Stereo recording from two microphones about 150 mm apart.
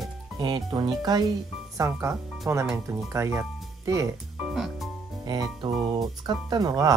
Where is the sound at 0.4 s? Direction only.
25° right (ahead or behind).